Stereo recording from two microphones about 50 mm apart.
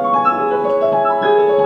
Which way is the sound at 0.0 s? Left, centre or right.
Centre.